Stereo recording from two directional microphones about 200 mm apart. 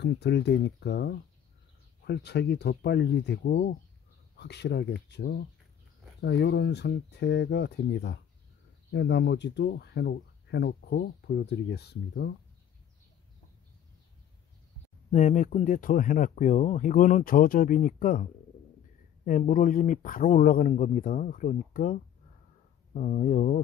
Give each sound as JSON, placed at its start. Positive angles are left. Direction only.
{"t": 0.0, "sound": "speech", "side_deg": 60}
{"t": 15.0, "sound": "speech", "side_deg": 35}